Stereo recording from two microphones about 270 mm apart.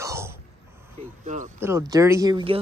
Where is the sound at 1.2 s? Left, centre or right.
Right.